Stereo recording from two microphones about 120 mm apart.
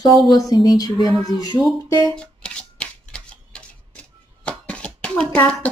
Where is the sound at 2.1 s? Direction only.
10° left (ahead or behind).